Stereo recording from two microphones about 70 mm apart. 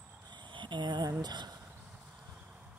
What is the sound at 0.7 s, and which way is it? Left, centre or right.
Speech, right.